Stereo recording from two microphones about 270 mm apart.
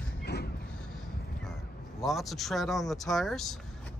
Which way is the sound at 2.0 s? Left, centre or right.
Centre.